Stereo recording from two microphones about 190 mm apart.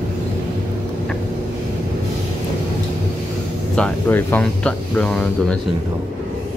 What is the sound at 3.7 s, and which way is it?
Speech, 10° left (ahead or behind).